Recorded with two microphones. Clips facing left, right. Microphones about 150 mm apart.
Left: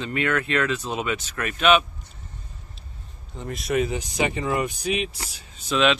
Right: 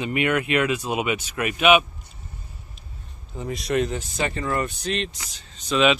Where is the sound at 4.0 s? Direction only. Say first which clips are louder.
Left 2 dB; 15° left (ahead or behind).